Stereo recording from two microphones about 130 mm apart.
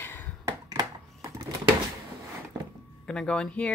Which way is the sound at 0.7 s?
25° right (ahead or behind).